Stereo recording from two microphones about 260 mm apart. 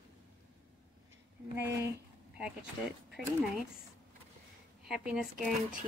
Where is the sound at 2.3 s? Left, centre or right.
Centre.